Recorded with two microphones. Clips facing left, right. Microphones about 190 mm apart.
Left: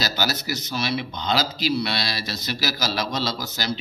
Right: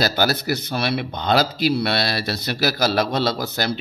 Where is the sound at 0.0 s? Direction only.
55° right (ahead or behind).